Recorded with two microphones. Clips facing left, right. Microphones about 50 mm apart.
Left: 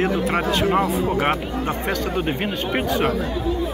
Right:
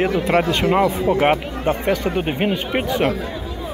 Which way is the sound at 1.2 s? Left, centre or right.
Right.